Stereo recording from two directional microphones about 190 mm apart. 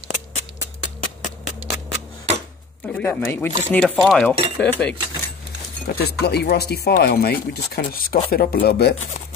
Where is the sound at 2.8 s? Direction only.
10° left (ahead or behind).